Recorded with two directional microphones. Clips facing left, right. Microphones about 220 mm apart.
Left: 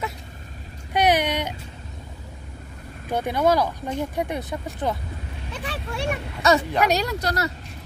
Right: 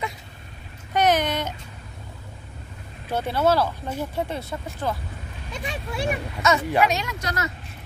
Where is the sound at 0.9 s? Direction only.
10° left (ahead or behind).